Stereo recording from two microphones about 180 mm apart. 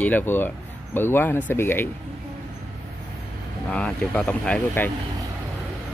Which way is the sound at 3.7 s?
5° left (ahead or behind).